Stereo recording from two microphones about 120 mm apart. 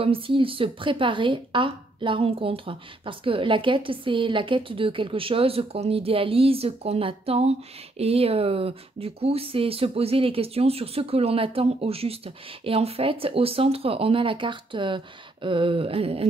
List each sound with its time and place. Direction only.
0.0 s a woman's voice: 50° right (ahead or behind)